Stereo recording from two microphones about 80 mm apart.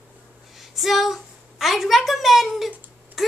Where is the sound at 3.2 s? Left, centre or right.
Centre.